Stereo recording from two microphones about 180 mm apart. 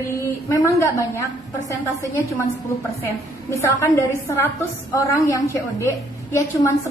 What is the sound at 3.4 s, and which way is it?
A woman's voice, 15° left (ahead or behind).